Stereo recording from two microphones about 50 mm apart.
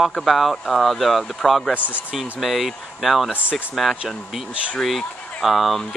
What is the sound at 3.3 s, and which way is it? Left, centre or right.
Speech, right.